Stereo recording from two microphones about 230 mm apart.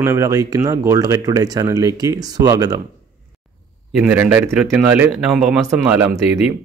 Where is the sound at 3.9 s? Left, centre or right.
Centre.